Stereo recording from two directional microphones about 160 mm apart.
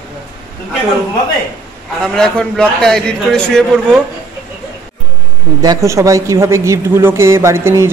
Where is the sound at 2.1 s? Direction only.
5° left (ahead or behind).